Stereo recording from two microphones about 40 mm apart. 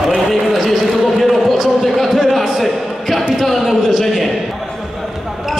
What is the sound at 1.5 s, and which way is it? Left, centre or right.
A man's voice, centre.